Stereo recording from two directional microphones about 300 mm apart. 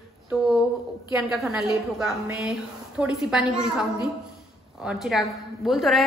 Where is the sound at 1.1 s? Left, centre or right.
Centre.